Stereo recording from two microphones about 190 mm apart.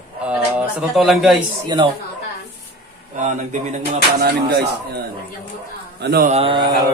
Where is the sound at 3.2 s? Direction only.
40° right (ahead or behind).